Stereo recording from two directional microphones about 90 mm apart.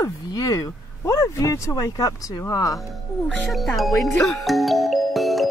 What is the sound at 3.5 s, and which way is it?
Speech, centre (ahead or behind).